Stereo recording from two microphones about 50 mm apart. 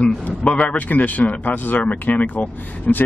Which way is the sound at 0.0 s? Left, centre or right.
Left.